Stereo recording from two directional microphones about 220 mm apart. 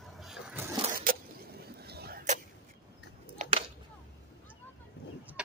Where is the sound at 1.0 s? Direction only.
45° right (ahead or behind).